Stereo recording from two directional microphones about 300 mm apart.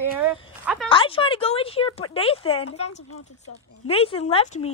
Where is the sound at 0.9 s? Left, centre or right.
Centre.